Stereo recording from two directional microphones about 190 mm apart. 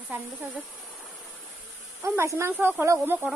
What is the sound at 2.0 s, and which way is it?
Speech, 15° right (ahead or behind).